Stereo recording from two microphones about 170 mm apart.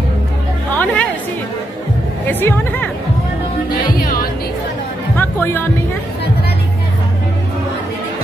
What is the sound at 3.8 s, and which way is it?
Music, 55° left (ahead or behind).